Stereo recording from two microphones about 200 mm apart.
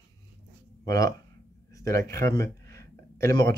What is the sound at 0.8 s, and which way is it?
Speech, 15° left (ahead or behind).